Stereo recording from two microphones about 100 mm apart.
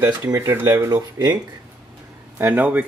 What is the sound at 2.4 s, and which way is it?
Speech, 15° right (ahead or behind).